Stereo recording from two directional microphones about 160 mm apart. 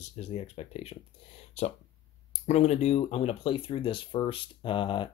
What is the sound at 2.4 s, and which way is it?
Speech, 45° left (ahead or behind).